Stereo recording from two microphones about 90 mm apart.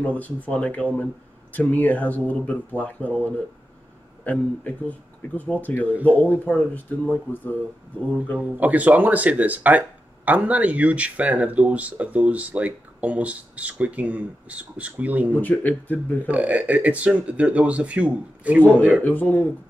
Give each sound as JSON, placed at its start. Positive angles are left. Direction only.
{"t": 0.0, "sound": "speech", "side_deg": 15}
{"t": 8.4, "sound": "speech", "side_deg": -15}
{"t": 15.4, "sound": "speech", "side_deg": 20}
{"t": 16.3, "sound": "speech", "side_deg": -15}
{"t": 19.0, "sound": "speech", "side_deg": 20}